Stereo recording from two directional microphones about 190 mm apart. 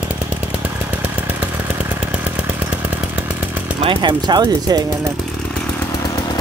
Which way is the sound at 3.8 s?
25° right (ahead or behind).